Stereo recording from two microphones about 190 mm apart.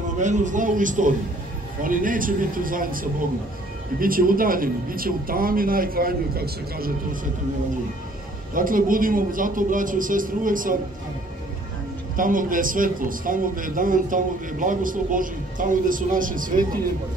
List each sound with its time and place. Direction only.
0.2 s a man's voice: 40° right (ahead or behind)
8.5 s a man's voice: 45° right (ahead or behind)
12.2 s a man's voice: 45° right (ahead or behind)